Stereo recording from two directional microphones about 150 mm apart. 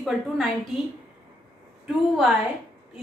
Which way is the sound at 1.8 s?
5° right (ahead or behind).